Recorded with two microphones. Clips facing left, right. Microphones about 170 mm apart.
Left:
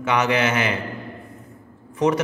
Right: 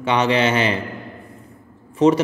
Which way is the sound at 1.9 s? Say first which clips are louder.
Right 5 dB; 25° right (ahead or behind).